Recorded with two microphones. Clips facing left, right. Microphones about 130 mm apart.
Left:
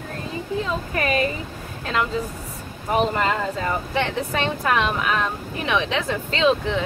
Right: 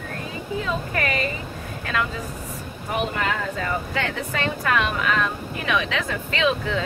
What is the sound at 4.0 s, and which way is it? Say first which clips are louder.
Speech: left 3 dB; 25° left (ahead or behind).